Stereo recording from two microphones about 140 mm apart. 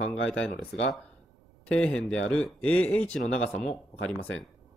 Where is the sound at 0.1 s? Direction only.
5° left (ahead or behind).